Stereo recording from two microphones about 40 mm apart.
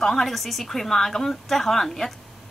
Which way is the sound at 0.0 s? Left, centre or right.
Centre.